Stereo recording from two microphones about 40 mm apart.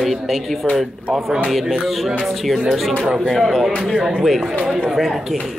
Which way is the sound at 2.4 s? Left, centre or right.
Centre.